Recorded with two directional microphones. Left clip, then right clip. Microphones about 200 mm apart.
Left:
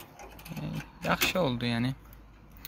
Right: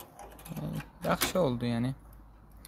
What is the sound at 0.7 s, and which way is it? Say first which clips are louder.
Speech: left 1 dB; 20° right (ahead or behind).